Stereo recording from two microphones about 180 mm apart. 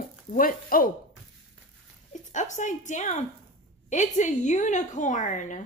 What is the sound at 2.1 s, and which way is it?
Speech, 40° left (ahead or behind).